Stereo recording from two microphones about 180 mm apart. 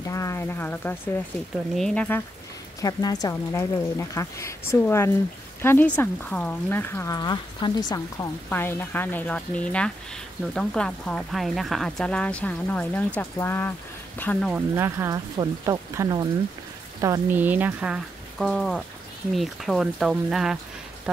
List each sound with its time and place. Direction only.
0.1 s speech: 15° left (ahead or behind)
2.8 s speech: 20° left (ahead or behind)
14.5 s speech: 15° right (ahead or behind)